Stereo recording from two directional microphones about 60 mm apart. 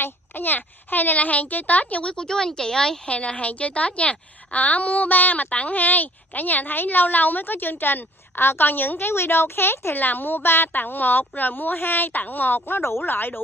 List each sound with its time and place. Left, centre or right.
0.0 s a child's voice: left